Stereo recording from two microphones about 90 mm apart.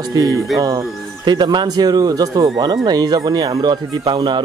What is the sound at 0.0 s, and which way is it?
Speech, 45° right (ahead or behind).